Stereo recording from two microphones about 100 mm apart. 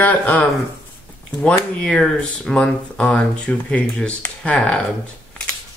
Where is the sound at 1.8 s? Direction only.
10° left (ahead or behind).